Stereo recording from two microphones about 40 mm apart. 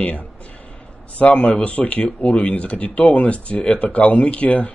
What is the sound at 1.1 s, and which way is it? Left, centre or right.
Speech, left.